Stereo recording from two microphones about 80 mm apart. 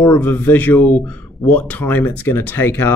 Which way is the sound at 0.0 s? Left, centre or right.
Left.